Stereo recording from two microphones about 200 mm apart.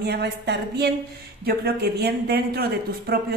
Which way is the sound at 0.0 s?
55° right (ahead or behind).